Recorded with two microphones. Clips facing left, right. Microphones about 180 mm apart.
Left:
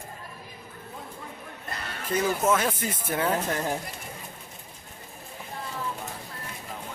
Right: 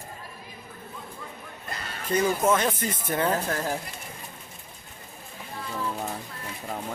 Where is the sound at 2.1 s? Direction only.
5° left (ahead or behind).